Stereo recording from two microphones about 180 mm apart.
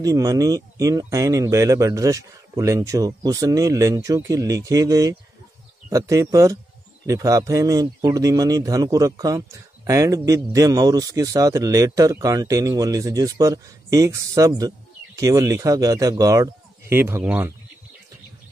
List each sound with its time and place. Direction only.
0.0 s speech: 20° right (ahead or behind)